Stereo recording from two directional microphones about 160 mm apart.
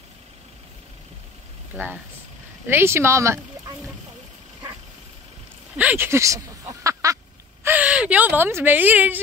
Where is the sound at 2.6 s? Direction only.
15° right (ahead or behind).